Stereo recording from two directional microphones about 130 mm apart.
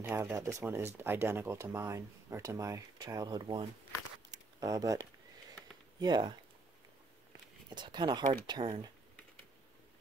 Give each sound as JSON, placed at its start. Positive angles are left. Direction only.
{"t": 0.0, "sound": "speech", "side_deg": -15}
{"t": 4.3, "sound": "a sound", "side_deg": -25}
{"t": 5.9, "sound": "speech", "side_deg": -35}
{"t": 7.7, "sound": "speech", "side_deg": -35}